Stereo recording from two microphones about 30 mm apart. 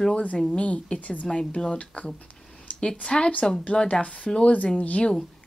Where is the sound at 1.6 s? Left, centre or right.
Left.